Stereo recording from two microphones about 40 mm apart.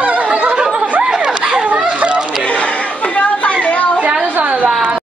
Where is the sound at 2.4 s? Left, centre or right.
Left.